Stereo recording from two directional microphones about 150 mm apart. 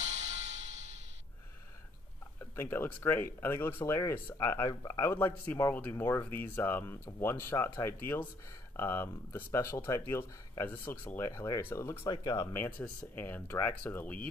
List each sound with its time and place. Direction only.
2.5 s speech: 15° left (ahead or behind)